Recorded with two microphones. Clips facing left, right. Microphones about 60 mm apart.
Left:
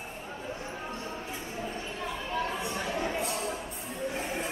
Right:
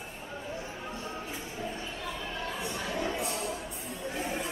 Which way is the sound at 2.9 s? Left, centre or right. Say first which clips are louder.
Left 1 dB; left.